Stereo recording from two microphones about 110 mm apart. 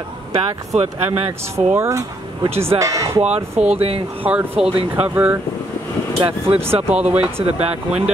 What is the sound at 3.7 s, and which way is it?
Speech, 70° right (ahead or behind).